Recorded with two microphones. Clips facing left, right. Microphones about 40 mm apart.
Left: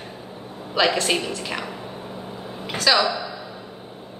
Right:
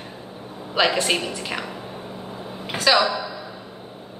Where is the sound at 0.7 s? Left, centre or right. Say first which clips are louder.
Even; centre.